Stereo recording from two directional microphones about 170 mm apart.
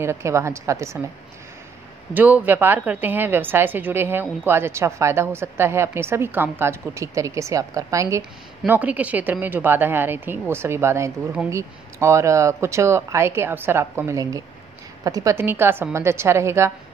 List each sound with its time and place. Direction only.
0.0 s a woman's voice: 15° right (ahead or behind)
2.1 s a woman's voice: 10° right (ahead or behind)